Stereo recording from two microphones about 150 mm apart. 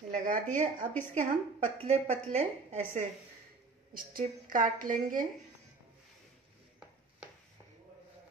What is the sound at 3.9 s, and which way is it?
A woman's voice, 70° right (ahead or behind).